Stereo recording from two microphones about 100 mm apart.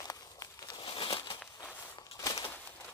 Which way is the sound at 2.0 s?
35° left (ahead or behind).